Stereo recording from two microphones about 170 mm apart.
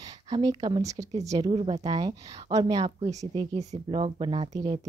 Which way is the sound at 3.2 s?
20° right (ahead or behind).